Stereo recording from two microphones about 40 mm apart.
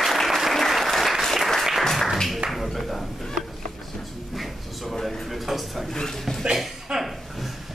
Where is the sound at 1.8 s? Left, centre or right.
Centre.